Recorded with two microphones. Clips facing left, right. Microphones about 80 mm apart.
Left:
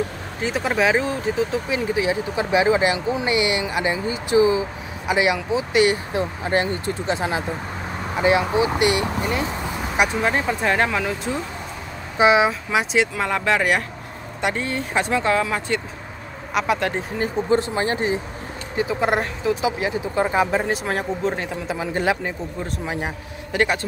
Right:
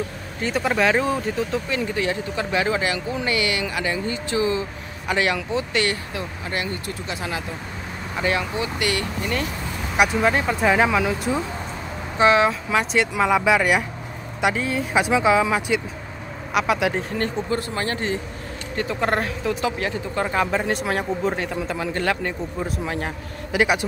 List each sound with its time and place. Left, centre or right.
0.4 s speech: centre
6.1 s speech: left
9.9 s speech: centre
12.2 s speech: centre
17.5 s speech: left
23.5 s speech: centre